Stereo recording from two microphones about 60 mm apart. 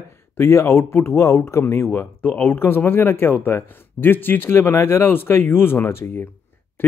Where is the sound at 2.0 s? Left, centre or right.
Left.